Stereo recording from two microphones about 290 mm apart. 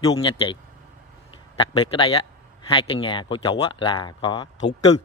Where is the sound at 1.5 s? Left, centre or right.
Centre.